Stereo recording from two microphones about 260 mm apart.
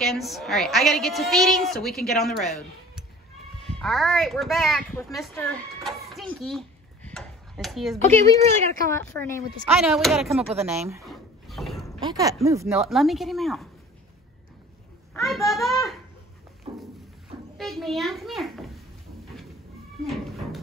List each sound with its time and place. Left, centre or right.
0.0 s a woman's voice: centre
6.4 s a sound: centre
8.9 s speech: centre
9.8 s a woman's voice: centre
11.1 s a sound: centre
12.0 s speech: centre
12.7 s a woman's voice: centre
15.1 s a woman's voice: centre
16.7 s a sound: centre
17.6 s a woman's voice: centre
20.1 s a woman's voice: centre